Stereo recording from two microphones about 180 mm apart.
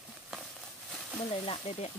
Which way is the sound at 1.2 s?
35° left (ahead or behind).